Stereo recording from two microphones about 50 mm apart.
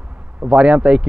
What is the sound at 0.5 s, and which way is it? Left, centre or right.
Speech, centre.